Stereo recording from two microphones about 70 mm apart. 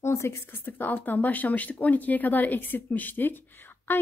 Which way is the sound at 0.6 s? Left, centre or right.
Left.